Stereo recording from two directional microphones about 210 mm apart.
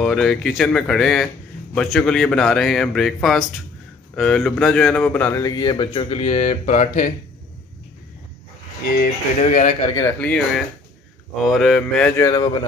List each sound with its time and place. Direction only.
0.0 s speech: centre (ahead or behind); by 7.1 s 35° left (ahead or behind)
8.8 s speech: 45° left (ahead or behind)
9.9 s speech: 10° left (ahead or behind)
12.2 s speech: 20° left (ahead or behind)